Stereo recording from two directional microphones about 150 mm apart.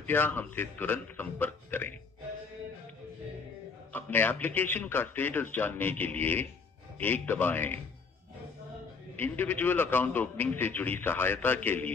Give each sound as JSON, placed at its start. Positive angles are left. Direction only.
{"t": 0.0, "sound": "a man's voice", "side_deg": 15}
{"t": 3.9, "sound": "a man's voice", "side_deg": 15}
{"t": 9.1, "sound": "a man's voice", "side_deg": 15}